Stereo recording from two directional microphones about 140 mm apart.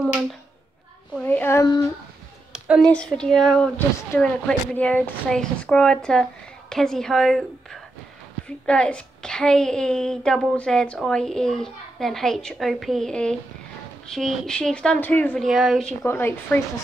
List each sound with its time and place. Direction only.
1.1 s a sound: 10° left (ahead or behind)
2.8 s a woman's voice: 5° left (ahead or behind)
15.4 s a woman's voice: centre (ahead or behind)
16.0 s a woman's voice: 15° left (ahead or behind)